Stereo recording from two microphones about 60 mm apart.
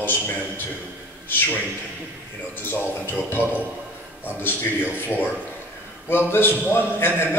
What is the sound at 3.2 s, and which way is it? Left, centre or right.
A man's voice, left.